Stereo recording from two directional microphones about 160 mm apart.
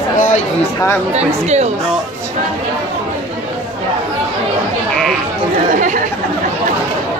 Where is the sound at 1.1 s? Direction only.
45° right (ahead or behind).